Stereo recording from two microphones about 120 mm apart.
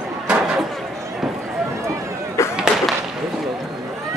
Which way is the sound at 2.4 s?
25° left (ahead or behind).